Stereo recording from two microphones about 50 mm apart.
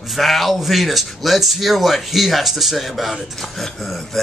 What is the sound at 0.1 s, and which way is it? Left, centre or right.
Speech, centre.